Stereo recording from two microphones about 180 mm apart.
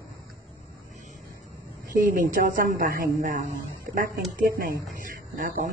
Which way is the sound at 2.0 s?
50° right (ahead or behind).